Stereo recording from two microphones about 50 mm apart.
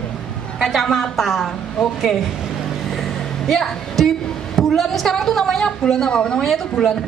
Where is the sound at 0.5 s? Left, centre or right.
Centre.